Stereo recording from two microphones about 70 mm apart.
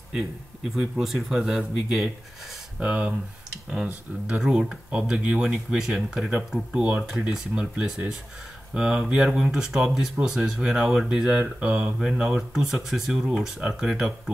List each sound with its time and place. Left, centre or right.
0.7 s a man's voice: centre; by 7.1 s right
7.1 s speech: centre